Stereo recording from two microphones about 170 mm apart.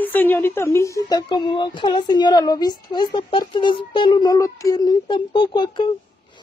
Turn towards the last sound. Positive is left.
turn(degrees=25)  # may be behind; listen again after turning